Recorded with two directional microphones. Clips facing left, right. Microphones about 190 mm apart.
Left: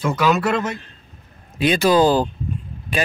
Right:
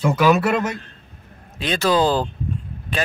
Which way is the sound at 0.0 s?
10° right (ahead or behind).